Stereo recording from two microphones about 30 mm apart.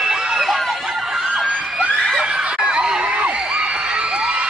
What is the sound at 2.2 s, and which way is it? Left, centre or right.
Snicker, right.